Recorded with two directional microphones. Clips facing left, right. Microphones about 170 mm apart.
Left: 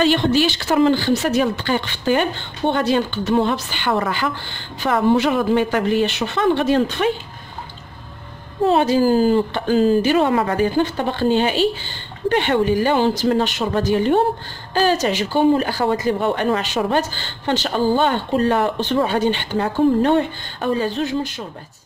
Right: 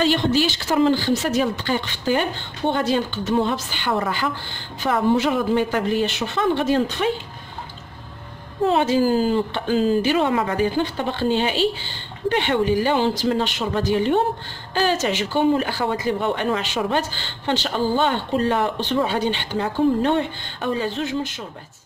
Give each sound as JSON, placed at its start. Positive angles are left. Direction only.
{"t": 0.0, "sound": "speech", "side_deg": 65}
{"t": 8.6, "sound": "speech", "side_deg": 35}